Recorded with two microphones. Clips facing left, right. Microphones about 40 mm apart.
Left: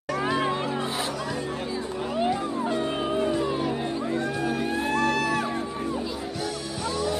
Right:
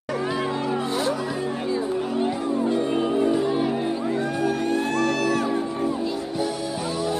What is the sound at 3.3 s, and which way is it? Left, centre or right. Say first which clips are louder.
Music: right 4 dB; centre.